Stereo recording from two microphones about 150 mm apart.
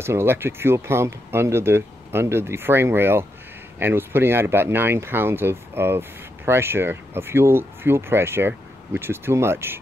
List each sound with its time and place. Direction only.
0.0 s speech: 15° right (ahead or behind)